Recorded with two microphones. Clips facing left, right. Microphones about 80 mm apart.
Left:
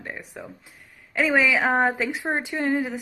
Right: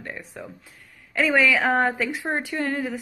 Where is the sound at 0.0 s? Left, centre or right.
Centre.